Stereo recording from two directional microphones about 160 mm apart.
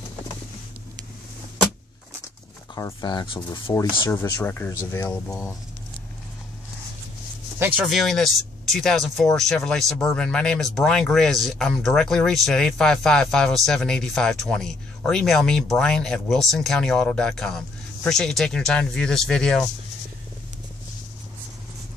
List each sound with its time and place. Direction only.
2.7 s speech: 25° left (ahead or behind)
4.1 s speech: 15° left (ahead or behind)
5.3 s speech: 5° left (ahead or behind)
7.5 s speech: 15° right (ahead or behind)
7.8 s speech: centre (ahead or behind)